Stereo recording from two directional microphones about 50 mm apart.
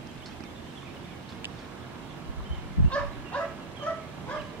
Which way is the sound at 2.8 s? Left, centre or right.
Left.